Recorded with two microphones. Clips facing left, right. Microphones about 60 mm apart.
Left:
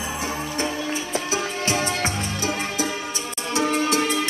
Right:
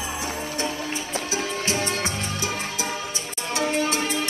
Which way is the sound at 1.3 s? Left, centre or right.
Left.